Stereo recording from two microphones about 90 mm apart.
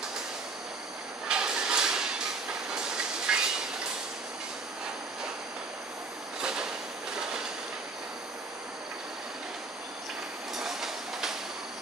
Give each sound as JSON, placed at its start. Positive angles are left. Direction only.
{"t": 1.3, "sound": "hiss", "side_deg": -10}
{"t": 3.3, "sound": "a sound", "side_deg": -10}
{"t": 6.4, "sound": "train", "side_deg": -10}
{"t": 10.5, "sound": "train", "side_deg": -5}